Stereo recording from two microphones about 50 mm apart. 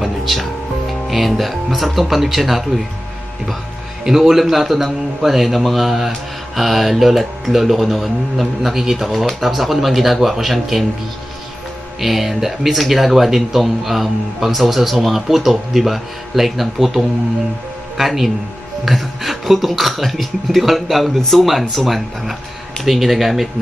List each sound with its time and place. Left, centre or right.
0.0 s speech: centre
4.0 s a man's voice: centre
12.0 s a man's voice: centre